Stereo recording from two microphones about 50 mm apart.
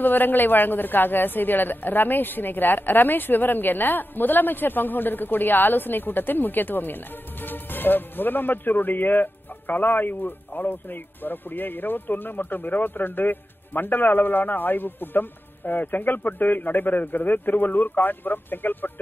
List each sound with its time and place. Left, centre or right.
0.0 s speech: left